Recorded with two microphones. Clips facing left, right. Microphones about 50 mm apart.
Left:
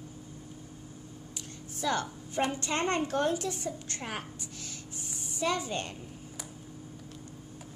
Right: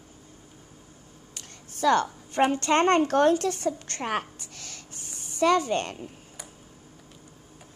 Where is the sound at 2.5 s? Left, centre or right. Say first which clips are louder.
Right 9 dB; right.